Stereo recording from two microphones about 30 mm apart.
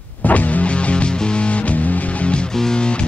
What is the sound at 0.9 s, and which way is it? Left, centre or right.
Music, left.